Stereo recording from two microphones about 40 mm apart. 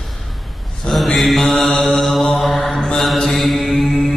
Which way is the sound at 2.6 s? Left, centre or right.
Centre.